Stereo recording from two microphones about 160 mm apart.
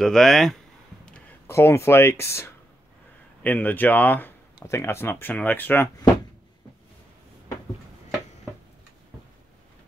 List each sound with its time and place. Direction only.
0.0 s speech: 5° left (ahead or behind)
1.5 s speech: 15° left (ahead or behind)